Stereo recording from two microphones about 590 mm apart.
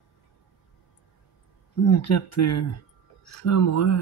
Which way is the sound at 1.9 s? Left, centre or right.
Left.